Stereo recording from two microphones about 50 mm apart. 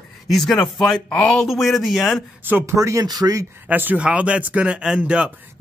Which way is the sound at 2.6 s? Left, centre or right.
Right.